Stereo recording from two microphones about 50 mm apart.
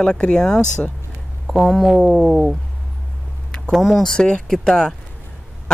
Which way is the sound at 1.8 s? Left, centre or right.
Centre.